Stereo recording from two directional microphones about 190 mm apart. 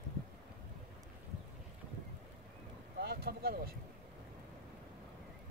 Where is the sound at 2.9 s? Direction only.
55° right (ahead or behind).